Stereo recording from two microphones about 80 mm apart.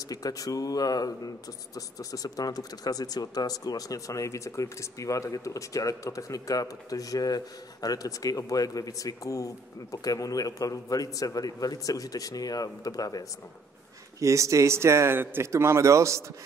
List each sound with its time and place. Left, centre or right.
0.1 s speech: left
14.2 s speech: right